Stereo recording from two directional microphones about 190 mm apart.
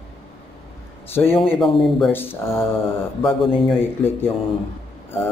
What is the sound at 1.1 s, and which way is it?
Speech, 10° left (ahead or behind).